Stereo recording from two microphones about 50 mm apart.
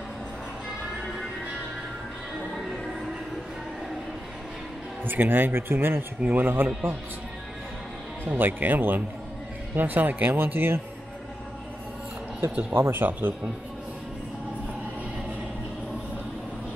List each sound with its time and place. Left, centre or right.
5.0 s speech: right
8.3 s speech: right
12.7 s speech: right